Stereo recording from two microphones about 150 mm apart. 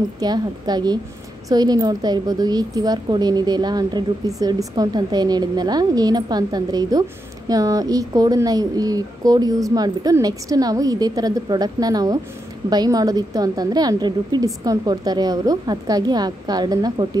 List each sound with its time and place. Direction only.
0.2 s a woman's voice: 25° right (ahead or behind)